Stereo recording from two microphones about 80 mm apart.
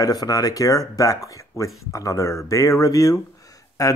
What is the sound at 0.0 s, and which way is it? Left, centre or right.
Speech, left.